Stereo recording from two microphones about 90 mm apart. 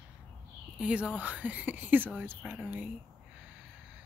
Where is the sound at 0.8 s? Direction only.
15° right (ahead or behind).